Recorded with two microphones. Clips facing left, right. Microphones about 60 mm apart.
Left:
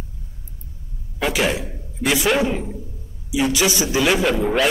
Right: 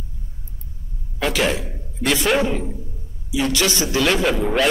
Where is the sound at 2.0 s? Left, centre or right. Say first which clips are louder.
Even; centre.